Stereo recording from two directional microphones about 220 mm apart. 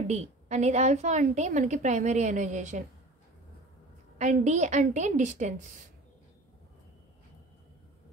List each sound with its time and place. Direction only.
0.1 s a woman's voice: 30° right (ahead or behind)
4.2 s a woman's voice: 30° right (ahead or behind)